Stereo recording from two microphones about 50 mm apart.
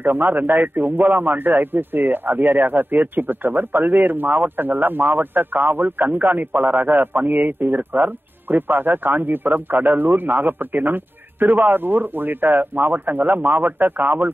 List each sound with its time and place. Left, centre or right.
0.0 s speech: right